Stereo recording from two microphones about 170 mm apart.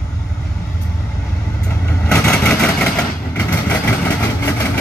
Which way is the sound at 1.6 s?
10° left (ahead or behind).